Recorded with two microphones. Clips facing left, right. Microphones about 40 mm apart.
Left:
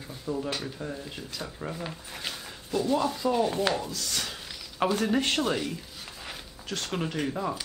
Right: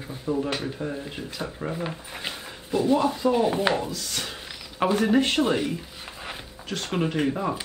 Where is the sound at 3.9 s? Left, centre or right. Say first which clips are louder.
Right 1 dB; centre.